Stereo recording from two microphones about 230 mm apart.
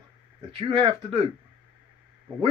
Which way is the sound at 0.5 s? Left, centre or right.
Right.